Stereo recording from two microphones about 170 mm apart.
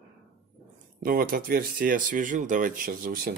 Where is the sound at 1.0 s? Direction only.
60° right (ahead or behind).